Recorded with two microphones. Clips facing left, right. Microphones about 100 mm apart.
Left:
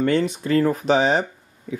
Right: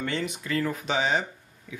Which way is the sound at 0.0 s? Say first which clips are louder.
Left 10 dB; 40° left (ahead or behind).